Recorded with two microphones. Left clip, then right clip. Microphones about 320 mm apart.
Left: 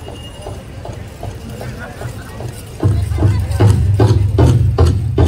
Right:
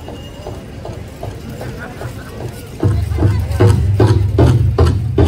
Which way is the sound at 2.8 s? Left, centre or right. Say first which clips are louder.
Right 1 dB; centre.